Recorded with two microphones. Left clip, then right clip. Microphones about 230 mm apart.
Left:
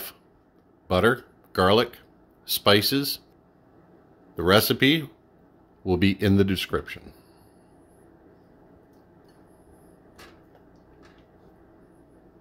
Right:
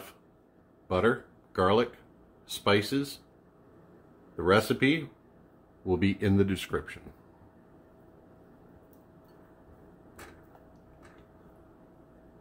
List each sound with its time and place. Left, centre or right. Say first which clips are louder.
0.8 s speech: left 5 dB; left
4.4 s speech: left 5 dB; left